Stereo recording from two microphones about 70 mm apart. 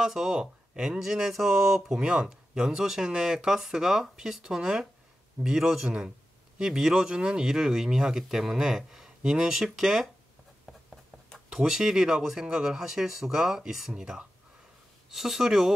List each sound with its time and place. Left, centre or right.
0.0 s speech: centre
11.5 s speech: centre